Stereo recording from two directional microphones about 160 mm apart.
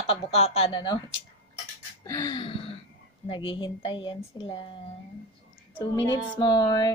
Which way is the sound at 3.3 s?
30° left (ahead or behind).